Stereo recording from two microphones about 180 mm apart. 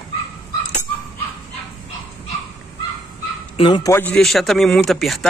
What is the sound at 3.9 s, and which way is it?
Speech, 10° left (ahead or behind).